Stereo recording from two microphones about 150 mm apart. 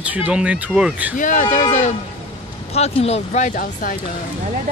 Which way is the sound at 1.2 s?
60° left (ahead or behind).